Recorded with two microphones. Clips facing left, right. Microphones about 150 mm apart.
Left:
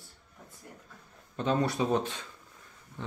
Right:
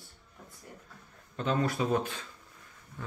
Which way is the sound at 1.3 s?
20° left (ahead or behind).